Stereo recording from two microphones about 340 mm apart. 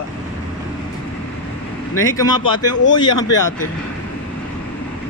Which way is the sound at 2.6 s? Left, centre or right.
Left.